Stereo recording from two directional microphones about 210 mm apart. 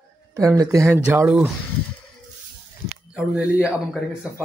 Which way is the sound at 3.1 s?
5° right (ahead or behind).